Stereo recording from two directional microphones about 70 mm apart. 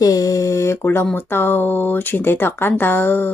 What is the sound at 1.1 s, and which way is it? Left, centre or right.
Speech, left.